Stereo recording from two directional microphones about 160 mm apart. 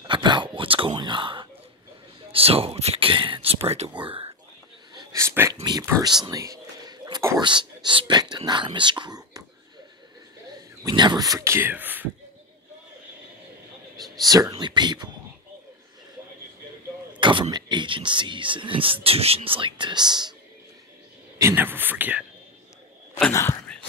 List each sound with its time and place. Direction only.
0.0 s a sound: 30° right (ahead or behind)
2.3 s speech: 35° right (ahead or behind)
4.9 s a sound: 15° right (ahead or behind)
5.5 s speech: 25° right (ahead or behind)
10.9 s speech: 25° right (ahead or behind)
14.2 s speech: 25° right (ahead or behind)
17.2 s speech: 30° right (ahead or behind)
21.4 s speech: 15° right (ahead or behind)
23.7 s whispering: 5° left (ahead or behind)